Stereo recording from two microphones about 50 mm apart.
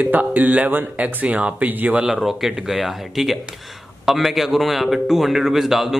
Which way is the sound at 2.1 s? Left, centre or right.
Centre.